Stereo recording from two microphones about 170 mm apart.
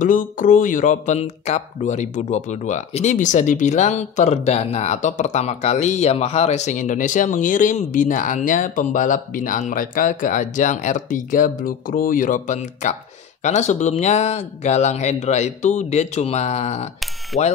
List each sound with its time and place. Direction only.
0.0 s speech: 50° left (ahead or behind)
17.3 s mechanisms: centre (ahead or behind)